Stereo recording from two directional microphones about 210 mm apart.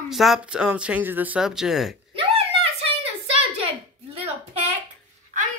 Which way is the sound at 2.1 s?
30° right (ahead or behind).